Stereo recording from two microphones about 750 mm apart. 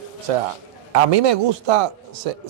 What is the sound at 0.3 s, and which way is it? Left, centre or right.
Speech, right.